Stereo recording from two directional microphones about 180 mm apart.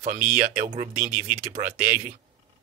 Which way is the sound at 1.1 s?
10° right (ahead or behind).